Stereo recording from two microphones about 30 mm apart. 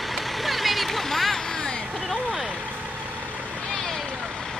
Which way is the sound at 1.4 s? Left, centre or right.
Left.